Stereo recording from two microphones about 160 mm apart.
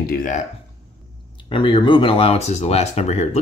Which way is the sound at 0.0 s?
65° left (ahead or behind).